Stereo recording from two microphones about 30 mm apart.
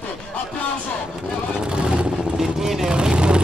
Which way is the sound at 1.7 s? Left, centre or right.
Right.